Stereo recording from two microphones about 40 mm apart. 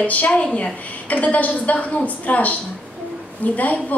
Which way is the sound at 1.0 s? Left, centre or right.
Left.